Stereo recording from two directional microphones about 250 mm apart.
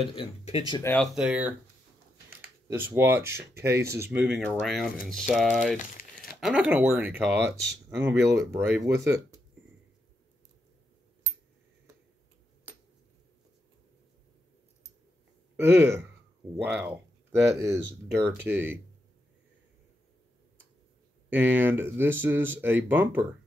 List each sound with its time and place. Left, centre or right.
0.0 s speech: left
0.9 s speech: centre
2.7 s speech: centre
15.5 s speech: centre
21.3 s speech: centre